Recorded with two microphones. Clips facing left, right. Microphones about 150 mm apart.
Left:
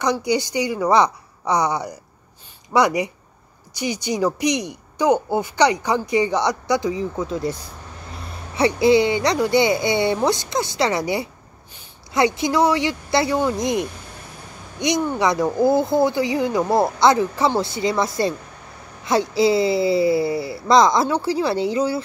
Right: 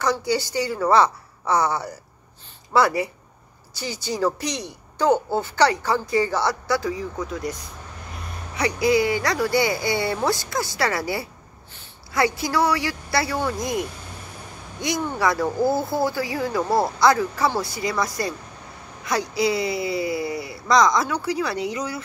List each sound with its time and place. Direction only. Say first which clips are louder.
0.0 s a woman's voice: left 2 dB; 15° left (ahead or behind)
8.5 s speech: left 5 dB; 25° left (ahead or behind)